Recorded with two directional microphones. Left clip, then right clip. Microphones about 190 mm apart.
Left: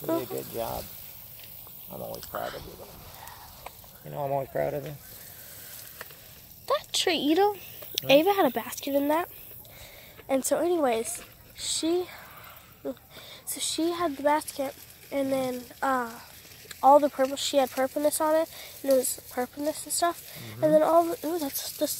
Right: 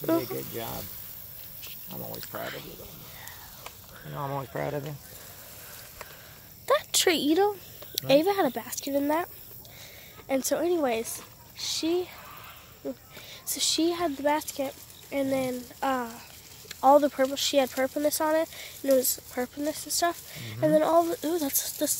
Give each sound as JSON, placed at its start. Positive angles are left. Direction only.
{"t": 0.0, "sound": "speech", "side_deg": -30}
{"t": 3.6, "sound": "speech", "side_deg": -35}
{"t": 6.6, "sound": "a sound", "side_deg": -20}
{"t": 7.3, "sound": "speech", "side_deg": 0}
{"t": 13.5, "sound": "speech", "side_deg": -20}